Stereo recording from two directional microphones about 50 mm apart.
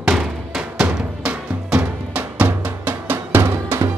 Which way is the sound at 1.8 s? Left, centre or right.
Right.